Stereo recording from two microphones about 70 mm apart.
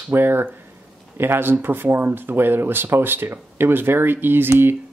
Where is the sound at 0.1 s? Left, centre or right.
Right.